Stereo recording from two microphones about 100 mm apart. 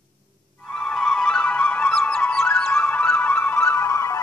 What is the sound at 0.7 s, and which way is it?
Music, 10° left (ahead or behind).